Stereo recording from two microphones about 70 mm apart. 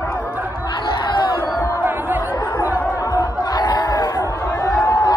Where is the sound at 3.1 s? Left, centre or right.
Left.